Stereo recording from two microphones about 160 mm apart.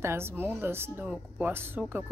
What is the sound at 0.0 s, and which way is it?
A woman's voice, 15° right (ahead or behind).